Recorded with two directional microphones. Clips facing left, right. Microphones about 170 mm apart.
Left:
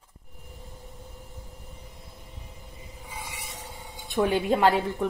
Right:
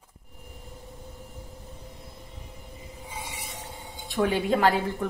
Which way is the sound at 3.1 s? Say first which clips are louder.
Right 1 dB; 20° right (ahead or behind).